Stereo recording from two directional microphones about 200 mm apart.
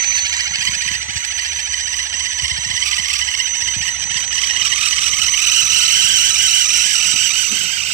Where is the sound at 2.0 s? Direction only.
15° right (ahead or behind).